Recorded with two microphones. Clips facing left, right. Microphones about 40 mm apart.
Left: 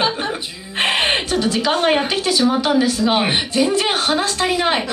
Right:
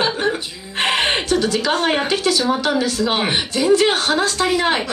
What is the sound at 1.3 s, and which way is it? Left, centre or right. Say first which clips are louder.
Speech: even; centre.